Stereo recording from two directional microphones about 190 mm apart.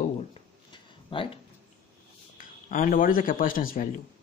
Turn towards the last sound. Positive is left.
turn(degrees=45)  # may be behind; listen again after turning